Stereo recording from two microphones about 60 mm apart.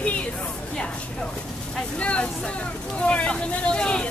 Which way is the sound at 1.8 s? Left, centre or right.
Centre.